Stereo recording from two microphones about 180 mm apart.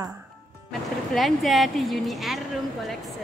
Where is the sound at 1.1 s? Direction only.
Centre (ahead or behind).